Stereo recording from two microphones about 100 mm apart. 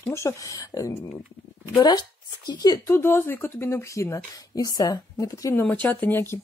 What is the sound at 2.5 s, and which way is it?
Speech, 40° left (ahead or behind).